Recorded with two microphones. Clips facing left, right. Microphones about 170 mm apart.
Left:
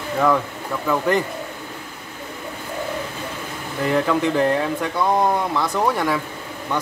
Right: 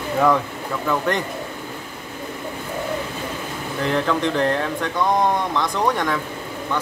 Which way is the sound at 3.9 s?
10° left (ahead or behind).